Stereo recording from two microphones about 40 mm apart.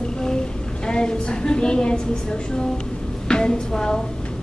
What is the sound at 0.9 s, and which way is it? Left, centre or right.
Speech, left.